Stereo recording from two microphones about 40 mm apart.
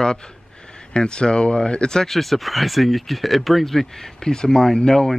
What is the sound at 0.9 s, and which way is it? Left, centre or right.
Speech, left.